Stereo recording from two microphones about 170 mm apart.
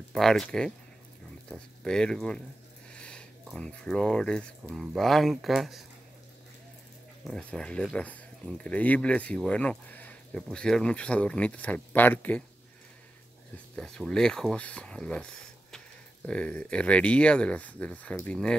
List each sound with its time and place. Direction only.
0.1 s speech: centre (ahead or behind)
7.2 s speech: 5° left (ahead or behind)
13.7 s speech: 5° left (ahead or behind)
16.3 s speech: 5° left (ahead or behind)